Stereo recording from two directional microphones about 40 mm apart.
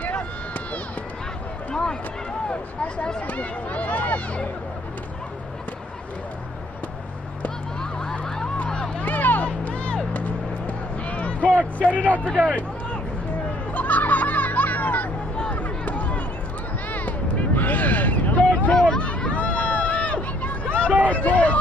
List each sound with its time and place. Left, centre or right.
1.7 s run: centre
3.2 s speech: left
7.8 s fowl: centre
8.6 s a sound: centre
9.0 s a sound: left
9.7 s music: left
11.8 s a man's voice: right
13.7 s music: left
15.5 s a sound: left
18.7 s hubbub: left
19.1 s a sound: left
21.1 s hubbub: left